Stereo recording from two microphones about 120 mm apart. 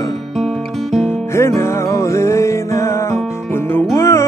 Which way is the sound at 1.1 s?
20° left (ahead or behind).